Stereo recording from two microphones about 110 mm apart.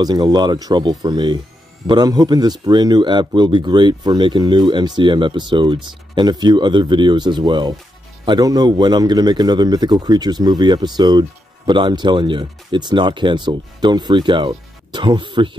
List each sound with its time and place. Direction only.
0.0 s a man's voice: 40° right (ahead or behind)